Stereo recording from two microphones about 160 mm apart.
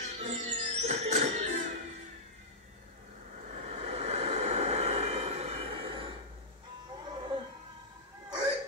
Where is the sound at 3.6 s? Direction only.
40° right (ahead or behind).